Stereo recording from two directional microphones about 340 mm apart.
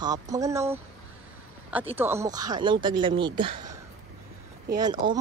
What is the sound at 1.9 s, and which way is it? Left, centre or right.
Speech, centre.